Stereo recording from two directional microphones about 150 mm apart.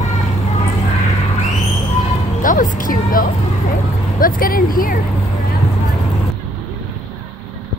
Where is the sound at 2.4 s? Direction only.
65° left (ahead or behind).